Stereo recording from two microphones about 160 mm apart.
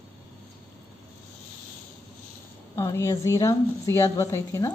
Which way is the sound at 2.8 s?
20° left (ahead or behind).